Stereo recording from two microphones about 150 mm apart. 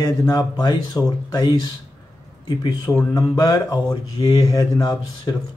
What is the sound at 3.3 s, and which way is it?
Speech, 25° left (ahead or behind).